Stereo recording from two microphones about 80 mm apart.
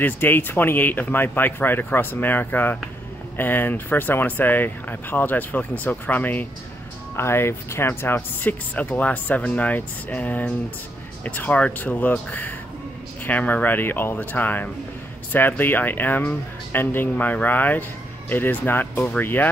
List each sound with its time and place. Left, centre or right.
0.0 s speech: left
7.2 s speech: left